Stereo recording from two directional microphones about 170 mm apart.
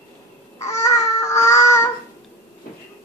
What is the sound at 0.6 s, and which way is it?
Baby cry, 20° left (ahead or behind).